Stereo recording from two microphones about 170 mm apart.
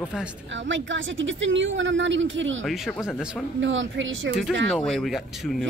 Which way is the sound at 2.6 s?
5° left (ahead or behind).